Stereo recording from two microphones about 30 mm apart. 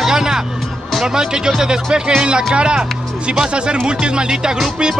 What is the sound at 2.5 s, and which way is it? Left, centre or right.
Music, right.